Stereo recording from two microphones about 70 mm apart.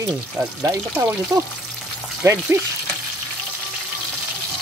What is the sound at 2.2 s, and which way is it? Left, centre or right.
Speech, right.